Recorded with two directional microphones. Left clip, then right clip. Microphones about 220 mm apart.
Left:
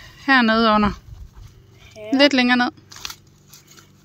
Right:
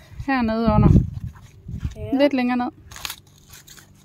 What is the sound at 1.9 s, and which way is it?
Horse, 40° right (ahead or behind).